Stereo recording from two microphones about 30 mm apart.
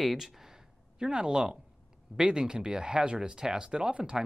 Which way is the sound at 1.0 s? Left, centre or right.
Right.